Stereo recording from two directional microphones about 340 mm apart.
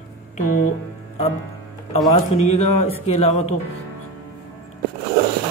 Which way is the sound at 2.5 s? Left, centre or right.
Left.